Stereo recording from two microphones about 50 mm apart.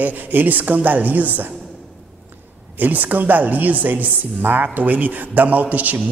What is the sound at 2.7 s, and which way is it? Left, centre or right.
A man's voice, right.